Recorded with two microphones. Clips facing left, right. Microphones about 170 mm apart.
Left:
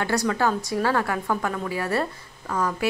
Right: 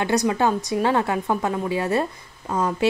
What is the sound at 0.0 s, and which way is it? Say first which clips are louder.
Speech: right 3 dB; 20° right (ahead or behind).